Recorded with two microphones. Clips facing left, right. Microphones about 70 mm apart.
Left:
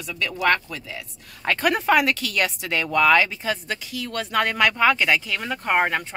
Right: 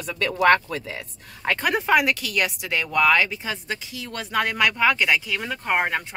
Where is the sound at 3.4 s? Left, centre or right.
Centre.